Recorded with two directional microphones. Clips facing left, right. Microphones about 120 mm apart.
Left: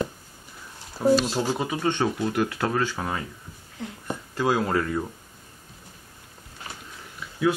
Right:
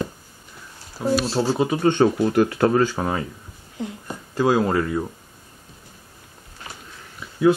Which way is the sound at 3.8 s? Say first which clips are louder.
Right 6 dB; 15° right (ahead or behind).